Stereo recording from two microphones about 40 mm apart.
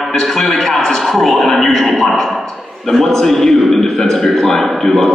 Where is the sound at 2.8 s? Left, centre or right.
Centre.